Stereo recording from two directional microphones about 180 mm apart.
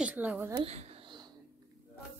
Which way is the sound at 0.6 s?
35° right (ahead or behind).